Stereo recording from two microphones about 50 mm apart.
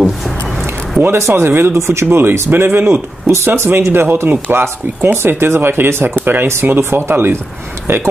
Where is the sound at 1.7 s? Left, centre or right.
Right.